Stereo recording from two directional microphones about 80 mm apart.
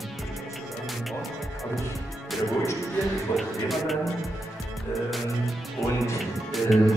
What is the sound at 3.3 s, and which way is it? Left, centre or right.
Music, centre.